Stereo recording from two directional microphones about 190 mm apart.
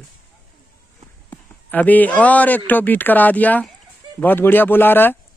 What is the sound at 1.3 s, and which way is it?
A man's voice, 10° left (ahead or behind).